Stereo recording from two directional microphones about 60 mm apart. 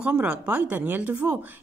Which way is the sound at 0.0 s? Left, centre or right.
Right.